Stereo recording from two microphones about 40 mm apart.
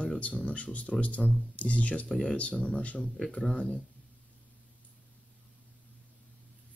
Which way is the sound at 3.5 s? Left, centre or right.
Centre.